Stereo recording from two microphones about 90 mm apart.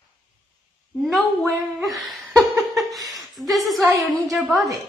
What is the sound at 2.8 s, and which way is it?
Chuckle, centre (ahead or behind).